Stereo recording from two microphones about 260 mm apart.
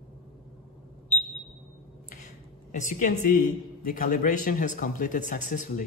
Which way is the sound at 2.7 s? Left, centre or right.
Left.